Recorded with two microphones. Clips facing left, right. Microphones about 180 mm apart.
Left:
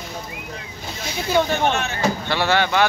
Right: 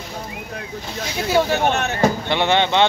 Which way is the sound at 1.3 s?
15° right (ahead or behind).